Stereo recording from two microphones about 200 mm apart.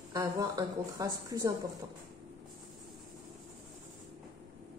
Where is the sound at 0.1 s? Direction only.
15° right (ahead or behind).